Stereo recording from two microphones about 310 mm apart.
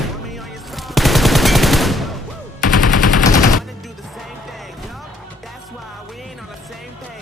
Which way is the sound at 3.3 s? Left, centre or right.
Left.